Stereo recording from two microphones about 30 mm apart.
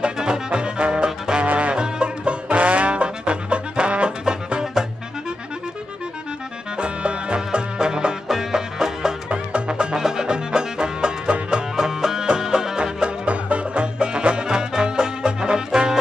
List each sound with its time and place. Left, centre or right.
0.0 s music: right
1.4 s music: right
1.8 s music: right
2.5 s trombone: right
6.8 s music: right
7.3 s music: right
8.3 s music: centre
9.3 s music: right
9.9 s music: centre
11.7 s music: centre
13.3 s music: right
13.9 s music: right